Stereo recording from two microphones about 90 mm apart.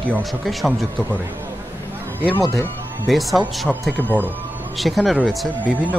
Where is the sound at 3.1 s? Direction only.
Centre (ahead or behind).